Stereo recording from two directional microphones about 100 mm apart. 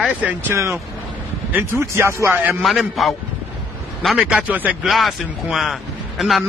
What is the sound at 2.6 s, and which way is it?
A man's voice, centre (ahead or behind).